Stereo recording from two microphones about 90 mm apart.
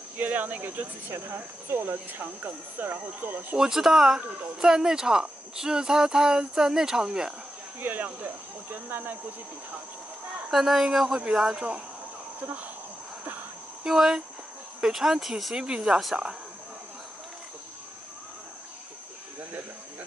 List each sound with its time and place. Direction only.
0.2 s speech: 20° right (ahead or behind)
3.5 s speech: 5° right (ahead or behind)
7.8 s speech: 20° right (ahead or behind)
10.5 s speech: 5° right (ahead or behind)
13.8 s speech: 5° right (ahead or behind)